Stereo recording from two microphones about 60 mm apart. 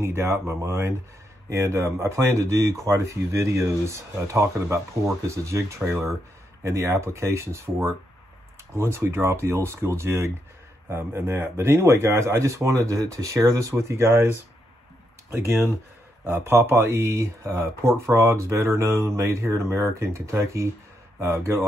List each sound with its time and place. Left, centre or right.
0.0 s speech: right
15.3 s speech: right